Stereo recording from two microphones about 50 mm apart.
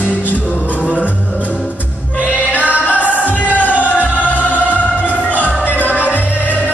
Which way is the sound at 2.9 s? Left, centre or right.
Left.